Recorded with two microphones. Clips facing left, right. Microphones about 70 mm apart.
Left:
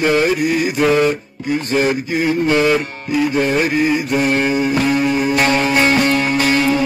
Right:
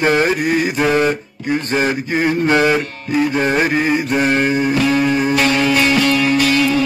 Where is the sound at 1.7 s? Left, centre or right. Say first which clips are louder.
Left 2 dB; right.